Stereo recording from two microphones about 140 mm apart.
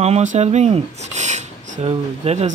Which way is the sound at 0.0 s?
55° right (ahead or behind).